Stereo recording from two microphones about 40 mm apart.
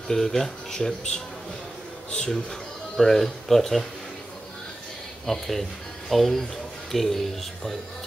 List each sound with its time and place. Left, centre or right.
0.1 s speech: centre
5.2 s speech: centre